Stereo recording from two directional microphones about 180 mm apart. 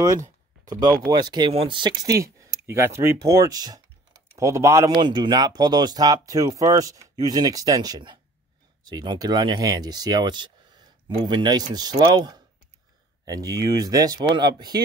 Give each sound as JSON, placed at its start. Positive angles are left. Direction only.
{"t": 0.0, "sound": "speech", "side_deg": -20}